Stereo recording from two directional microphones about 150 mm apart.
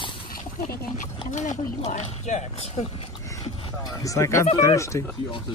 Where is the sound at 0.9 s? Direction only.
55° left (ahead or behind).